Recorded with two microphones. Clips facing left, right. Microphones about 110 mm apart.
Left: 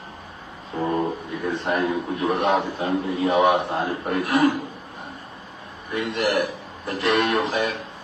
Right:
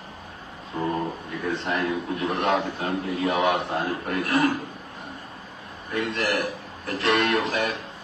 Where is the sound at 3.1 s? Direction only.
25° left (ahead or behind).